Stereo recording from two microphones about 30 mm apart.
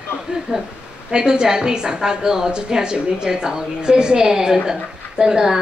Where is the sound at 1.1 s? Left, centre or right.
Right.